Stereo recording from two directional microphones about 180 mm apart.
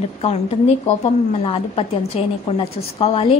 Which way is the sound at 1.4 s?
30° left (ahead or behind).